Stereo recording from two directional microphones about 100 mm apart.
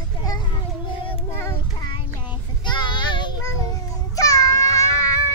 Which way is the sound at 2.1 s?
20° right (ahead or behind).